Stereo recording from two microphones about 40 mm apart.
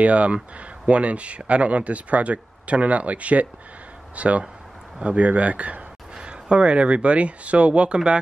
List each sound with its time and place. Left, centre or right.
0.0 s speech: right